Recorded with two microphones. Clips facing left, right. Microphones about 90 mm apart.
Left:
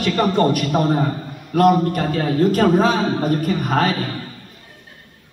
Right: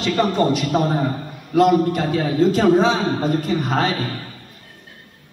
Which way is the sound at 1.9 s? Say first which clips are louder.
Even; 20° right (ahead or behind).